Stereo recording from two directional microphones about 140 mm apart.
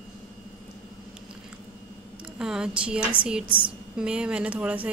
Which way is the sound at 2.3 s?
5° right (ahead or behind).